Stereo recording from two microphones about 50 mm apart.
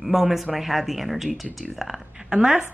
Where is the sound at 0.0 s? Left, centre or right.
Centre.